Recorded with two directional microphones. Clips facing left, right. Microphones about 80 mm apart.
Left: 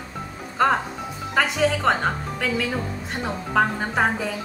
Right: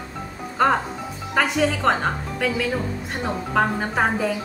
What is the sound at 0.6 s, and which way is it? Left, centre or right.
Speech, centre.